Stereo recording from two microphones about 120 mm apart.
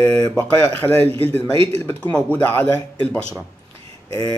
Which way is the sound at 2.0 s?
15° left (ahead or behind).